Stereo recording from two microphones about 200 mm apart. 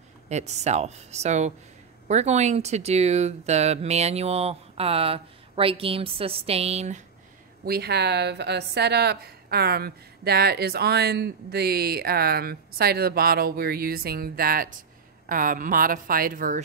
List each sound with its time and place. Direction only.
0.3 s speech: 35° right (ahead or behind)
7.6 s a woman's voice: 55° right (ahead or behind)